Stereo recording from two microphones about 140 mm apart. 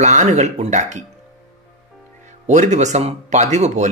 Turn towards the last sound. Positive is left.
turn(degrees=-55)  # may be behind; listen again after turning